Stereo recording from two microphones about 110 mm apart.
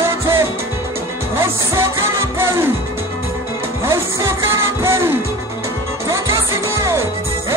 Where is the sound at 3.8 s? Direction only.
25° right (ahead or behind).